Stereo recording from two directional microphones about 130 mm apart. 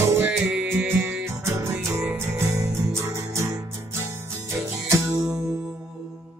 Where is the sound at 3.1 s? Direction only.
25° right (ahead or behind).